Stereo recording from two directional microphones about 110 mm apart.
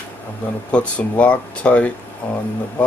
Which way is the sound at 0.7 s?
10° left (ahead or behind).